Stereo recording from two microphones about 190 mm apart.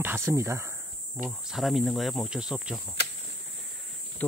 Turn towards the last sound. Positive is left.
turn(degrees=10)  # may be behind; listen again after turning